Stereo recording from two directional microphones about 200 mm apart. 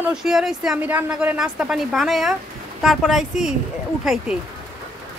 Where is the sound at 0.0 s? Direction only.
5° right (ahead or behind).